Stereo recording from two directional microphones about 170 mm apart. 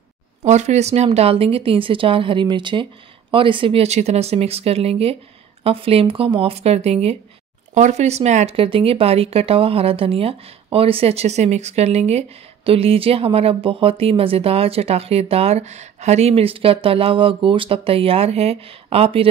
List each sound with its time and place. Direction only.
0.5 s speech: 40° right (ahead or behind)